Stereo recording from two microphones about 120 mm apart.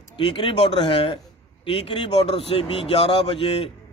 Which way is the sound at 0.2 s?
45° left (ahead or behind).